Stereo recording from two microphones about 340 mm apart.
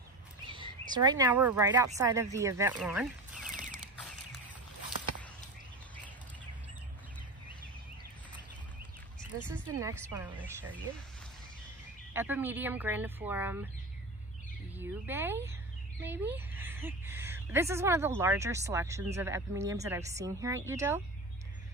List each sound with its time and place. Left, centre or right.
0.5 s speech: centre
3.5 s a sound: right
9.8 s speech: centre
12.1 s speech: centre
14.8 s a woman's voice: centre